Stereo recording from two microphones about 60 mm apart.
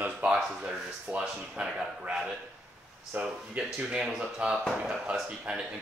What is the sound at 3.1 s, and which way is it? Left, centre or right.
Speech, right.